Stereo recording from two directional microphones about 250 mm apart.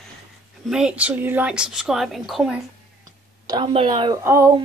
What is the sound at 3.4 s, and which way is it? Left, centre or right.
A woman's voice, centre.